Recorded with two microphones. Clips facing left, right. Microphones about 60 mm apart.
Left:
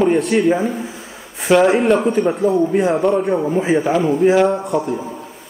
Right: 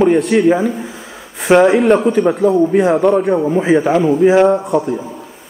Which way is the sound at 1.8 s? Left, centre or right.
Centre.